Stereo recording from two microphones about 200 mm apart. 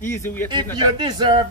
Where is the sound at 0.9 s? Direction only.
20° right (ahead or behind).